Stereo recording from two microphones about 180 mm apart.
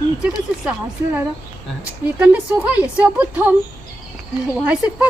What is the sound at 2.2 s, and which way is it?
A woman's voice, 10° right (ahead or behind).